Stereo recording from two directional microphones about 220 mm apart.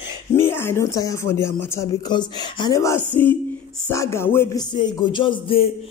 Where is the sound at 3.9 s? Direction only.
15° left (ahead or behind).